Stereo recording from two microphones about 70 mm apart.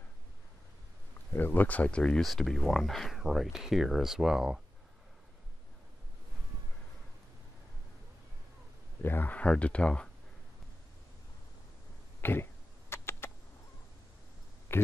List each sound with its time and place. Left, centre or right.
1.3 s speech: left
2.2 s speech: centre
9.0 s speech: left
12.2 s a sound: left
14.7 s speech: left